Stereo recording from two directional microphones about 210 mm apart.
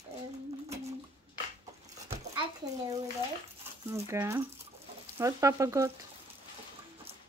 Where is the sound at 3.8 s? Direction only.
10° right (ahead or behind).